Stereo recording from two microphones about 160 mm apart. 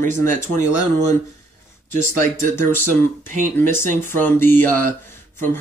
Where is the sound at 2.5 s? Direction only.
15° left (ahead or behind).